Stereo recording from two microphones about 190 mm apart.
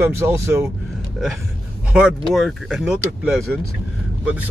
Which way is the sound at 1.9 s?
5° right (ahead or behind).